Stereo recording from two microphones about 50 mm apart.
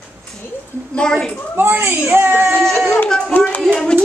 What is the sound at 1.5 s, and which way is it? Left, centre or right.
Speech, right.